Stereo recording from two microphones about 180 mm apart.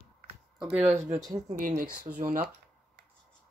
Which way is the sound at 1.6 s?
50° right (ahead or behind).